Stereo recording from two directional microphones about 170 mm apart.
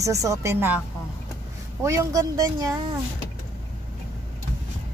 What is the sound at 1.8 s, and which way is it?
Speech, 20° right (ahead or behind).